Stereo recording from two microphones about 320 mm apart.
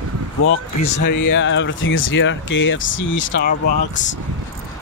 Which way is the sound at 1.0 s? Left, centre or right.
Left.